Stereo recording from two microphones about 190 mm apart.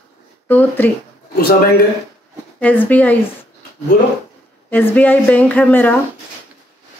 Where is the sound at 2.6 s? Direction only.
10° left (ahead or behind).